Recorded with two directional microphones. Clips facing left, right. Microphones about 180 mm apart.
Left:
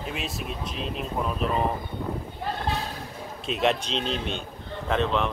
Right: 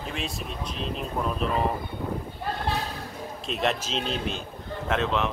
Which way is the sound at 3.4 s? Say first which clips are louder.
Left 3 dB; centre (ahead or behind).